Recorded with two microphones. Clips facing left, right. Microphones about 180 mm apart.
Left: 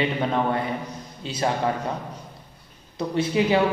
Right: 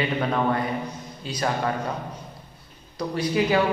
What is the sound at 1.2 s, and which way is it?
Speech, 25° left (ahead or behind).